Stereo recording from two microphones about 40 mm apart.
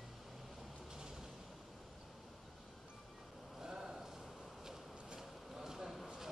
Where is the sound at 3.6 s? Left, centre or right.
Centre.